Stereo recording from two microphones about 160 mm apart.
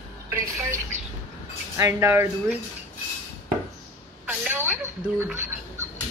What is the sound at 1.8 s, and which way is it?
Speech, 15° right (ahead or behind).